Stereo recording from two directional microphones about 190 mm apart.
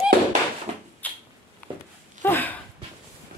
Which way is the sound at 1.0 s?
10° left (ahead or behind).